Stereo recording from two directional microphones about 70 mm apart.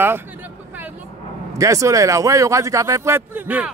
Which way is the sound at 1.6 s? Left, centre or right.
Right.